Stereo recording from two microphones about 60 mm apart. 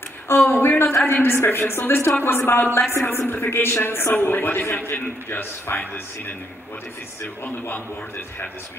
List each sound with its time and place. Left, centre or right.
0.5 s speech: left